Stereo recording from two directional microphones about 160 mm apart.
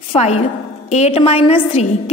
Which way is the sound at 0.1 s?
40° left (ahead or behind).